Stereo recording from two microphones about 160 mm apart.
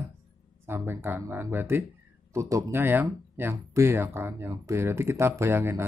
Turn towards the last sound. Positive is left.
turn(degrees=-15)  # may be behind; listen again after turning